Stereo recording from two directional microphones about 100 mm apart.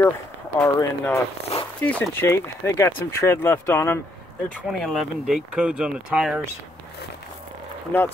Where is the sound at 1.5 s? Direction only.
90° left.